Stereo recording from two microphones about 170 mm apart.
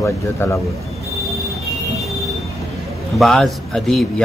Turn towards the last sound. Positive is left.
turn(degrees=0)  # may be behind; listen again after turning